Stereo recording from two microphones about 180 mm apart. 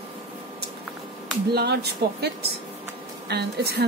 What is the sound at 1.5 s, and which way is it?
A woman's voice, 65° right (ahead or behind).